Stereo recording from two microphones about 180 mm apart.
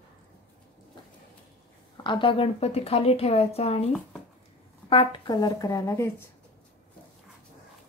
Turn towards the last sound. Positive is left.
turn(degrees=15)  # may be behind; listen again after turning